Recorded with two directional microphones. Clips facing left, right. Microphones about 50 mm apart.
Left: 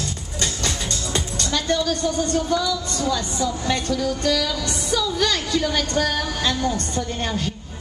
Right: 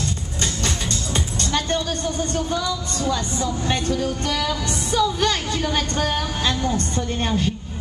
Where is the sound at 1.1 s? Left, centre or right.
Right.